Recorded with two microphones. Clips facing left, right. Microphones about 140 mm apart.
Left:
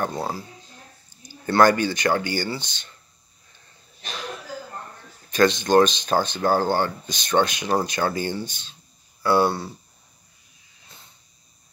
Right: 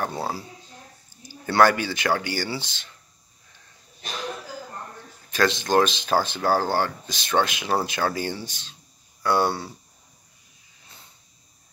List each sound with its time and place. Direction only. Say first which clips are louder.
0.0 s speech: left 1 dB; 10° right (ahead or behind)
5.3 s speech: left 4 dB; centre (ahead or behind)